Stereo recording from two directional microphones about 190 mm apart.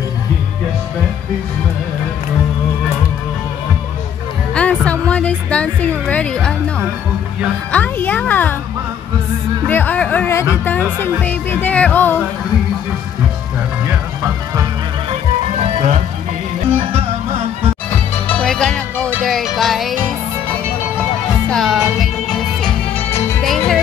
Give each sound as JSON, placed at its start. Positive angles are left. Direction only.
{"t": 4.6, "sound": "music", "side_deg": 5}
{"t": 7.7, "sound": "speech", "side_deg": 10}
{"t": 9.7, "sound": "music", "side_deg": 10}
{"t": 14.2, "sound": "music", "side_deg": -15}
{"t": 15.6, "sound": "music", "side_deg": -35}
{"t": 18.2, "sound": "music", "side_deg": 5}
{"t": 21.5, "sound": "music", "side_deg": 0}